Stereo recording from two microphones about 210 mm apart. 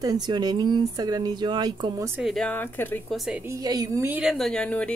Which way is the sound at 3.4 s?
15° right (ahead or behind).